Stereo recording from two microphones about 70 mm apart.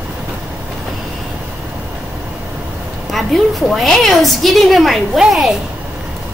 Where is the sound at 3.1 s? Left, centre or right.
Centre.